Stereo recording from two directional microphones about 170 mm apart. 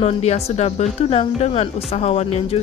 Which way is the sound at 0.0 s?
40° left (ahead or behind).